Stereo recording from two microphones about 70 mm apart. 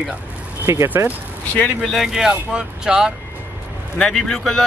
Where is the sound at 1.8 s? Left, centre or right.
Centre.